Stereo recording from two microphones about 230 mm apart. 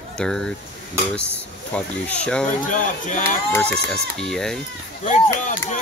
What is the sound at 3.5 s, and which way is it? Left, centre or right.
Speech, centre.